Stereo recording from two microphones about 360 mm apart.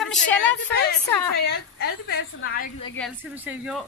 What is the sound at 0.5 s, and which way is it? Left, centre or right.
A woman's voice, left.